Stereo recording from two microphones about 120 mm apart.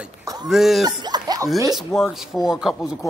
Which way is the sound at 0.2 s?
30° right (ahead or behind).